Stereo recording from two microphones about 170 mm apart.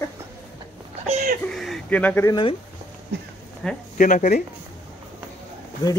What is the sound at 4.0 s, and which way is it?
Speech, 50° left (ahead or behind).